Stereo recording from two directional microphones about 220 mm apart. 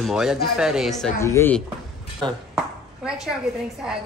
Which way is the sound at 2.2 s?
20° right (ahead or behind).